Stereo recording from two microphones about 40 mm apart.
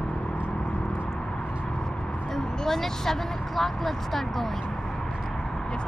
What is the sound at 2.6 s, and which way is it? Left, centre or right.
Speech, centre.